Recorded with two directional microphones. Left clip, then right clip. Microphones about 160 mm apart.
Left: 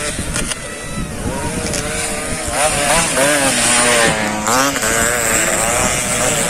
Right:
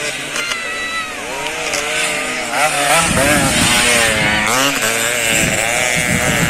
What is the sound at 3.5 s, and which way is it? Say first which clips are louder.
Vehicle: right 1 dB; 45° left (ahead or behind).